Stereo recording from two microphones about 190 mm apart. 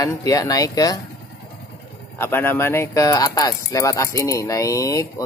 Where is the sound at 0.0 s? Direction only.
20° left (ahead or behind).